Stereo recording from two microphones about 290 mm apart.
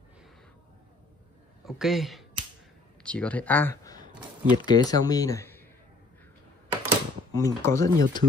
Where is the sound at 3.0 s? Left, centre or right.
Centre.